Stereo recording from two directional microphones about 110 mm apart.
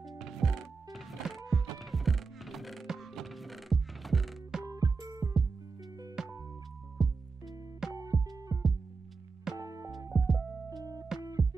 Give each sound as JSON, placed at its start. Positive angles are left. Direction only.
{"t": 0.2, "sound": "music", "side_deg": 0}
{"t": 4.6, "sound": "music", "side_deg": -35}
{"t": 6.2, "sound": "music", "side_deg": -5}
{"t": 7.9, "sound": "music", "side_deg": -30}
{"t": 10.1, "sound": "music", "side_deg": 0}
{"t": 10.8, "sound": "music", "side_deg": -35}